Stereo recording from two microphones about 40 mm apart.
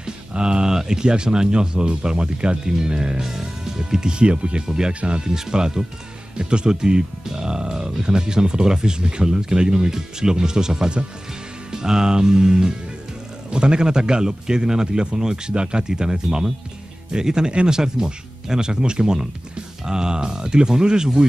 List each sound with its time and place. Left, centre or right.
0.0 s speech: right